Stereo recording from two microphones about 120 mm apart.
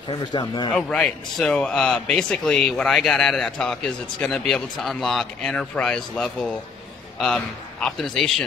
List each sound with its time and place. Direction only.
0.1 s speech: 40° left (ahead or behind)
0.7 s a man's voice: 5° left (ahead or behind)